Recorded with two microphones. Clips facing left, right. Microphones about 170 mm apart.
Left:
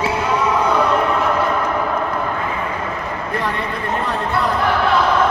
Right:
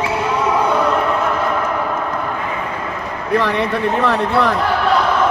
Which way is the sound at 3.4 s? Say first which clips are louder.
Right 6 dB; 90° right.